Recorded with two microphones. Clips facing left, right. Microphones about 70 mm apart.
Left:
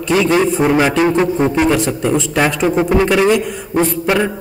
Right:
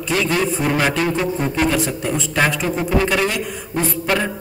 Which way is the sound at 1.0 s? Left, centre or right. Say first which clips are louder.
Left 7 dB; left.